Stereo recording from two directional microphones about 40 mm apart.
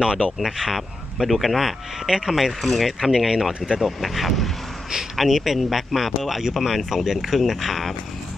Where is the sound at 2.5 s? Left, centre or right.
Centre.